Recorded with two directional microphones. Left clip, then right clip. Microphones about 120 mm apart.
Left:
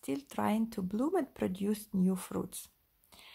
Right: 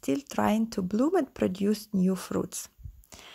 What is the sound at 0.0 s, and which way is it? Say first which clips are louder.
Speech: right 7 dB; 45° right (ahead or behind).